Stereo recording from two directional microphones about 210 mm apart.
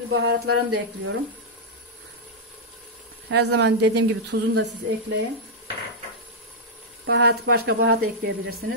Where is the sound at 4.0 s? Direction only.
90° right.